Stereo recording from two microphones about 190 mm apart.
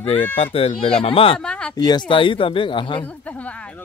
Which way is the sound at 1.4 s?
5° left (ahead or behind).